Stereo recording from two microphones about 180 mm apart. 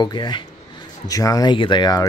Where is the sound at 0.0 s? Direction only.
25° left (ahead or behind).